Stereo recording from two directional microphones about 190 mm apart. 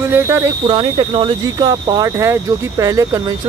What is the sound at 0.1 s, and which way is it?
Speech, 15° right (ahead or behind).